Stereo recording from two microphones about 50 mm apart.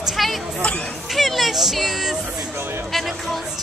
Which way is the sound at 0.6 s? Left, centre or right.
Left.